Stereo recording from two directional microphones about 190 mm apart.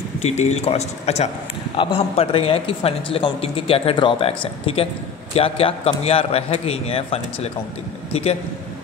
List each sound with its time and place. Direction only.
0.2 s a man's voice: 35° left (ahead or behind)